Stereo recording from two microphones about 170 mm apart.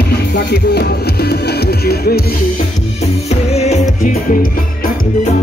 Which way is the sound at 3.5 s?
40° left (ahead or behind).